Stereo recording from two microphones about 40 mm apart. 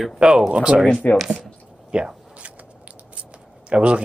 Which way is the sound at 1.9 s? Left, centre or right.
Right.